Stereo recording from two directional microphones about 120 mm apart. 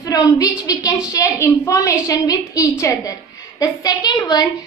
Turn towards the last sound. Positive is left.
turn(degrees=35)  # may be behind; listen again after turning